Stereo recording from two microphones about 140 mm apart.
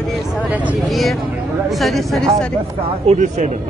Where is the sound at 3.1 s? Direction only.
60° right (ahead or behind).